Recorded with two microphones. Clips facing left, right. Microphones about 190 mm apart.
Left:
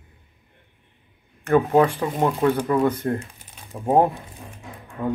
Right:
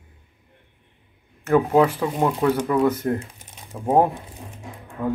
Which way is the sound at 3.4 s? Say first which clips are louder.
Right 1 dB; 20° right (ahead or behind).